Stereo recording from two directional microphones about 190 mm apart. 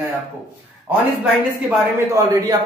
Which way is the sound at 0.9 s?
10° right (ahead or behind).